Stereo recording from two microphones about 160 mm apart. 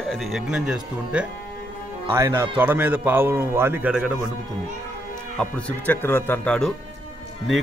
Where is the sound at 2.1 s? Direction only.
15° right (ahead or behind).